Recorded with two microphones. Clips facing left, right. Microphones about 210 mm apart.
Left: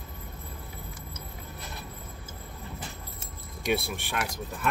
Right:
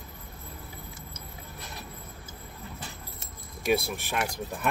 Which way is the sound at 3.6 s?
Centre (ahead or behind).